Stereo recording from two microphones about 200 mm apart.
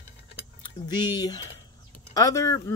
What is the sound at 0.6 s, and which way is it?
Speech, 20° left (ahead or behind).